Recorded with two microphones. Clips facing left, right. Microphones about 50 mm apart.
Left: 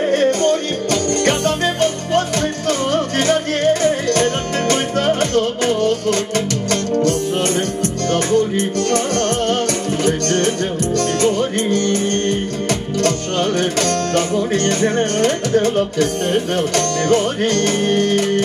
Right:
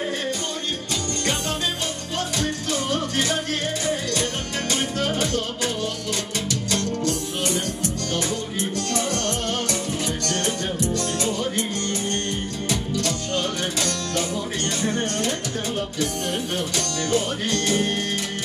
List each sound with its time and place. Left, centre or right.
0.1 s music: left
1.8 s music: left